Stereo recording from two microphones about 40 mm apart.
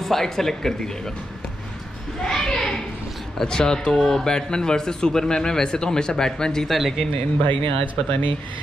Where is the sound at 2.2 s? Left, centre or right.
Centre.